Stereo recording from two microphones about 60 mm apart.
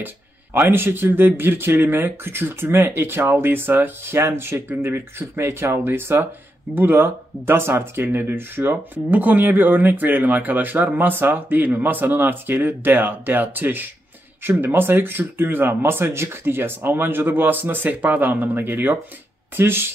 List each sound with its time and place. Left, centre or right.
0.0 s speech: right